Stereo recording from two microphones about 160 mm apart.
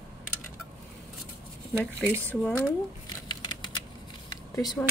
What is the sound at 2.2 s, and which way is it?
Speech, 10° left (ahead or behind).